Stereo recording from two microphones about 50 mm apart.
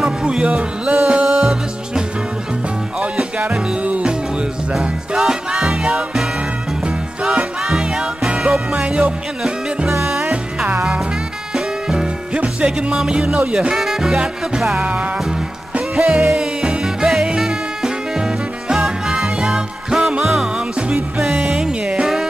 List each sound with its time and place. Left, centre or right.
0.0 s music: centre
1.0 s music: centre
3.3 s music: right
4.7 s music: centre
7.6 s music: centre
8.7 s music: right
11.5 s music: centre
12.4 s music: centre
14.8 s music: right
16.0 s music: centre
20.5 s music: centre
22.0 s music: centre